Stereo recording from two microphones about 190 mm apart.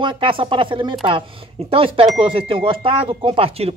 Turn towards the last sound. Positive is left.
turn(degrees=-30)  # may be behind; listen again after turning